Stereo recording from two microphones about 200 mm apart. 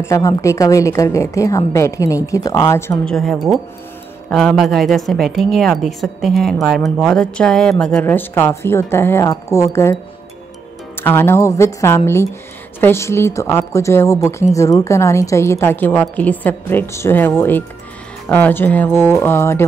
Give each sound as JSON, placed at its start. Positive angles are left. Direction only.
{"t": 0.0, "sound": "a woman's voice", "side_deg": 15}
{"t": 3.1, "sound": "a woman's voice", "side_deg": 0}
{"t": 11.0, "sound": "a woman's voice", "side_deg": 10}